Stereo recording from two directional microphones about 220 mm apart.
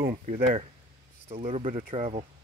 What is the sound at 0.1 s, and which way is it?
Speech, 30° right (ahead or behind).